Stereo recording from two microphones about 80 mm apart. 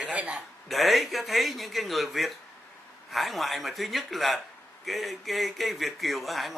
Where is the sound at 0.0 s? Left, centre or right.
Centre.